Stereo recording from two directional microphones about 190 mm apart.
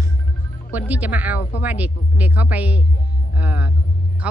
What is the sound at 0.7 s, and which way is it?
Speech, 10° right (ahead or behind).